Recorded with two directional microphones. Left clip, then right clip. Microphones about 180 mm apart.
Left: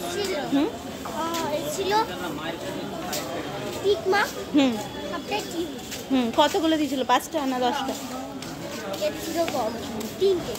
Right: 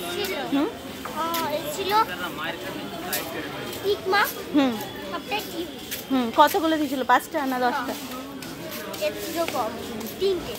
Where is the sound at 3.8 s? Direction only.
20° left (ahead or behind).